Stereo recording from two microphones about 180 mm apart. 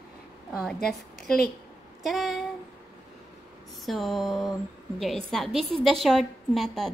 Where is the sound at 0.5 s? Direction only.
5° left (ahead or behind).